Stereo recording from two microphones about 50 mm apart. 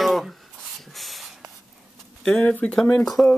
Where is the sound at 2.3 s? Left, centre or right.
Left.